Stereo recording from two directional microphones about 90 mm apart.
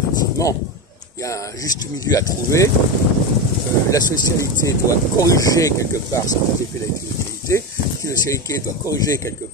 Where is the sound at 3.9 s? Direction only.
35° left (ahead or behind).